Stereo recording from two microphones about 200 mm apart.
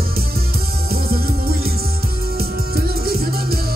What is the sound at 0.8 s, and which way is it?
Music, 50° right (ahead or behind).